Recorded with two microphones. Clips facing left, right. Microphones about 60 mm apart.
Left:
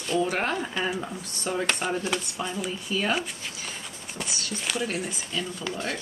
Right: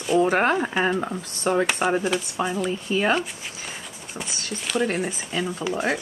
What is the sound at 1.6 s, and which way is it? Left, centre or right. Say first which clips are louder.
Speech: right 5 dB; centre.